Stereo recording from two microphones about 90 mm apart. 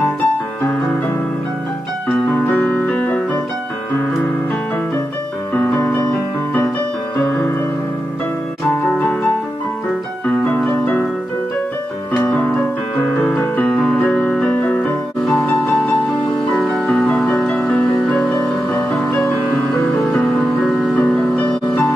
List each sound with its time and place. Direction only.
2.0 s keyboard: 15° left (ahead or behind)
5.5 s music: 15° left (ahead or behind)
7.2 s music: 20° left (ahead or behind)
10.2 s keyboard: 15° left (ahead or behind)
12.2 s music: 15° left (ahead or behind)
14.0 s music: 20° left (ahead or behind)
15.2 s music: centre (ahead or behind); by 19.3 s 20° left (ahead or behind)
20.9 s music: 15° left (ahead or behind)